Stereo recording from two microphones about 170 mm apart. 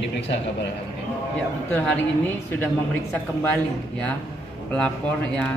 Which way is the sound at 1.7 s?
10° left (ahead or behind).